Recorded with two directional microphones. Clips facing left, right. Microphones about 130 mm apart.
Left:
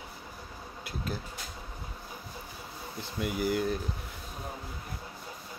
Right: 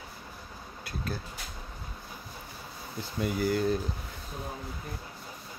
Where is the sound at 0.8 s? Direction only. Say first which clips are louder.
Even; 15° left (ahead or behind).